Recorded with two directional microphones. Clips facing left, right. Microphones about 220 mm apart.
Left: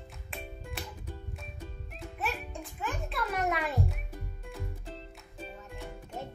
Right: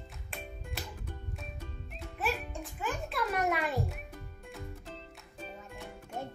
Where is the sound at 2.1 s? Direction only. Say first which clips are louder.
Right 2 dB; centre (ahead or behind).